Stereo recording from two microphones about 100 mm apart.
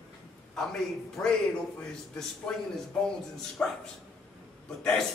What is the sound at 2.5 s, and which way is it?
Speech, 5° left (ahead or behind).